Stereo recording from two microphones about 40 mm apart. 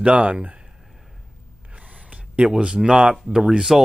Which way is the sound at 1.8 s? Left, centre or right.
Right.